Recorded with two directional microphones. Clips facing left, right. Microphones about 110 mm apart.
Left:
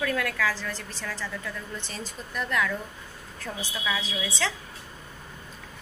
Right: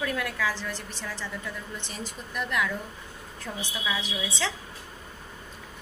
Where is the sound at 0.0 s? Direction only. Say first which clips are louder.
Left 2 dB; 15° right (ahead or behind).